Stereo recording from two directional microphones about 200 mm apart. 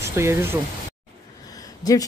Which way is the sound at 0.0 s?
15° right (ahead or behind).